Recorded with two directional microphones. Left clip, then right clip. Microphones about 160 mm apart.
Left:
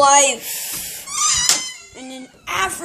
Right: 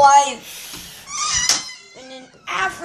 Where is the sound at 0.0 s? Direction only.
55° left (ahead or behind).